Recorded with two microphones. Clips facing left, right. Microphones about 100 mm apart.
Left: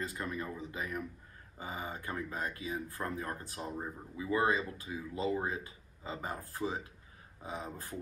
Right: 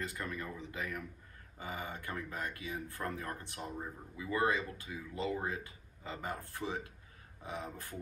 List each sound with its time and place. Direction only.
0.1 s speech: 25° left (ahead or behind)